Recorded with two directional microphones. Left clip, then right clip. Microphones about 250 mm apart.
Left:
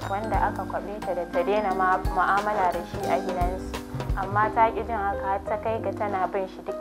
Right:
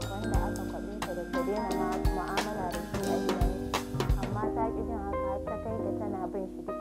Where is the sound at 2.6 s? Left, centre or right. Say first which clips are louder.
Left 7 dB; centre.